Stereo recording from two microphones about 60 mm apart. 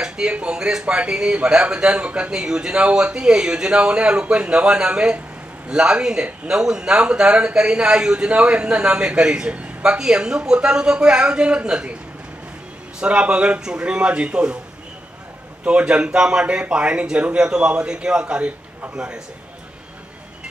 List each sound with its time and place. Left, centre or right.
0.0 s a man's voice: centre
13.0 s a man's voice: centre
15.6 s a man's voice: centre